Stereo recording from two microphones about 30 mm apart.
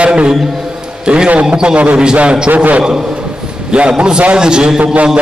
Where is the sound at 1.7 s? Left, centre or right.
Right.